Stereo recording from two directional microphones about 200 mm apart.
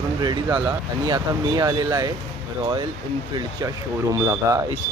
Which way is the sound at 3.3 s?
15° right (ahead or behind).